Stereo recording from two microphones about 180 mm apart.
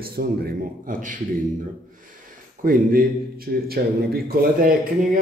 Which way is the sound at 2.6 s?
50° right (ahead or behind).